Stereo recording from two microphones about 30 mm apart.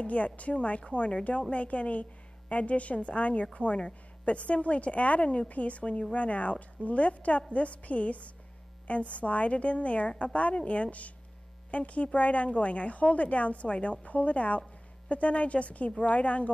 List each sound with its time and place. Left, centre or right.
0.0 s a woman's voice: left
5.5 s a woman's voice: left